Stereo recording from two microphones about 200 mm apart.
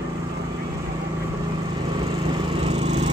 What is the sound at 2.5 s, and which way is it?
Lawn mower, 30° right (ahead or behind).